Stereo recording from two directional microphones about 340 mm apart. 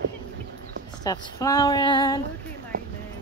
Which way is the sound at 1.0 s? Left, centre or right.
Centre.